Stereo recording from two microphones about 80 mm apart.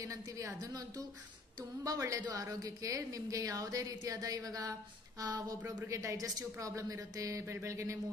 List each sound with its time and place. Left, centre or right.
0.0 s a woman's voice: right
2.0 s a woman's voice: right